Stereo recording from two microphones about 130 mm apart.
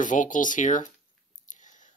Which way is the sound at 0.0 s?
80° left.